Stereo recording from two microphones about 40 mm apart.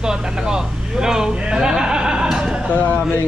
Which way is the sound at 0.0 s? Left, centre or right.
Centre.